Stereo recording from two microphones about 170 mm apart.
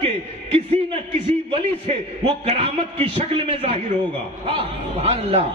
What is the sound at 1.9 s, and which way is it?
A man's voice, 30° right (ahead or behind).